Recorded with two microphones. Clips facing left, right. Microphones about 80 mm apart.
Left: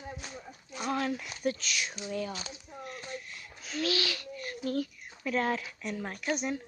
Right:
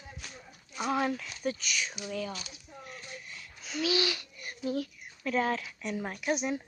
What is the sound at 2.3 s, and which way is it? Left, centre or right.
Speech, left.